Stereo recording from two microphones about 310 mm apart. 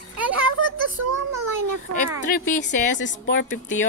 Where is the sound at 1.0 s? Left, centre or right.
Right.